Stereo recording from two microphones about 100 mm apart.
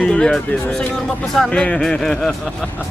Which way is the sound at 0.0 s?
10° left (ahead or behind).